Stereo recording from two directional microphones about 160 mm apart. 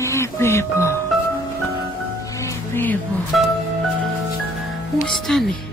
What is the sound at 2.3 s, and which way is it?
Music, 15° left (ahead or behind).